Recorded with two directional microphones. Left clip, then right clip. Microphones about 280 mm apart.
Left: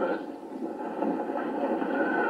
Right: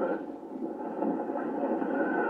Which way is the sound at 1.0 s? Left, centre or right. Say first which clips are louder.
Left 2 dB; centre.